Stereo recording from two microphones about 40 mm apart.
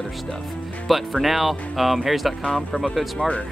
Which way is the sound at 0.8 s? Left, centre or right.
Centre.